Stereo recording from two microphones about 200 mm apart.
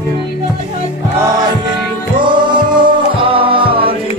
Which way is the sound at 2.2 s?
25° right (ahead or behind).